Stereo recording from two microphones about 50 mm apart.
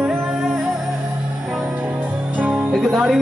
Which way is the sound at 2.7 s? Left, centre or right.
Centre.